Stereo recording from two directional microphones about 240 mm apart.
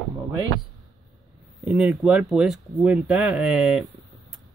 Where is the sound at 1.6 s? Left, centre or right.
Centre.